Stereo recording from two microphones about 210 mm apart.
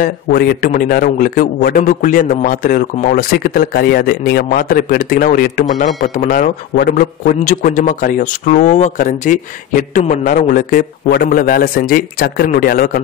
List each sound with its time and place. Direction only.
0.0 s a man's voice: 45° left (ahead or behind)